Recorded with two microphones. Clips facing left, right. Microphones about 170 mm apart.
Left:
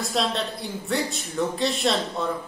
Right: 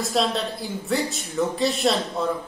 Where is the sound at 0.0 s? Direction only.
Centre (ahead or behind).